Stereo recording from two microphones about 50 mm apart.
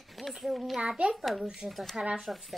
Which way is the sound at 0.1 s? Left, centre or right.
Centre.